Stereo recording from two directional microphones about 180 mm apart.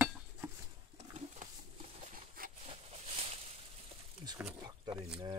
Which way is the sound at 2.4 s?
50° right (ahead or behind).